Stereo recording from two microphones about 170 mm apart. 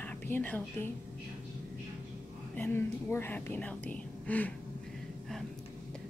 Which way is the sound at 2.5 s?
15° left (ahead or behind).